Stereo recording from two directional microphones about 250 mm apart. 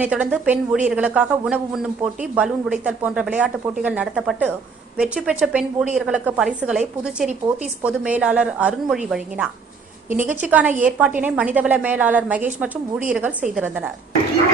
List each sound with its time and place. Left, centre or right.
0.0 s speech: centre
10.0 s a woman's voice: right
10.3 s a woman's voice: centre